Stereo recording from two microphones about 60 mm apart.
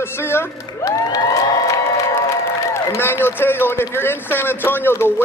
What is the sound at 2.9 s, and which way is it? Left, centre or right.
A man's voice, left.